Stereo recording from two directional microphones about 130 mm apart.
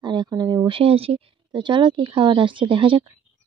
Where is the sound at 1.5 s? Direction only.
35° right (ahead or behind).